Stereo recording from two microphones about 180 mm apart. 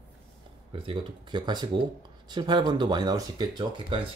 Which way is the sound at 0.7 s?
30° right (ahead or behind).